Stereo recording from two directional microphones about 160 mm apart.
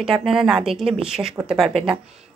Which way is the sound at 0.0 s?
Centre (ahead or behind).